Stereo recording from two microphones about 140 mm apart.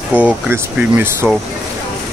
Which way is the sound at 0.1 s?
10° right (ahead or behind).